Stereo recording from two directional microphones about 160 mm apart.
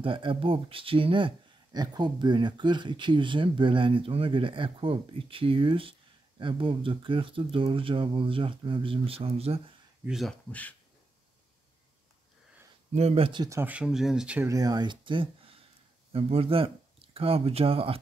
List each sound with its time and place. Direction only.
0.0 s speech: 35° right (ahead or behind)
10.0 s speech: centre (ahead or behind)
10.5 s speech: 10° left (ahead or behind)
12.9 s speech: 40° right (ahead or behind)
13.5 s speech: 10° right (ahead or behind)
14.5 s speech: 25° right (ahead or behind)